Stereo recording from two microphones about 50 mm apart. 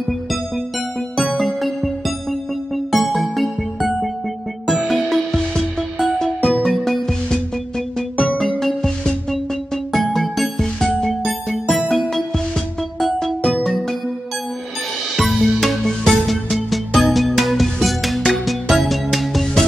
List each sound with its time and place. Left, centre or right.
1.1 s music: centre
8.4 s music: centre
10.9 s music: centre
11.9 s music: centre
15.1 s music: centre